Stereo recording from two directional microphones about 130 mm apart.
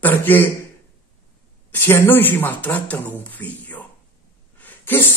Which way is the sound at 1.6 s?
15° left (ahead or behind).